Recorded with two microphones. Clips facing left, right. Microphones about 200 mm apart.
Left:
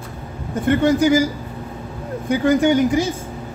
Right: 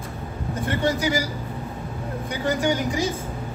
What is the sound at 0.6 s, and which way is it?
Speech, 50° left (ahead or behind).